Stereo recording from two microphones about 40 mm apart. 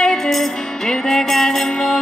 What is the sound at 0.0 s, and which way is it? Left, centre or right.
Music, centre.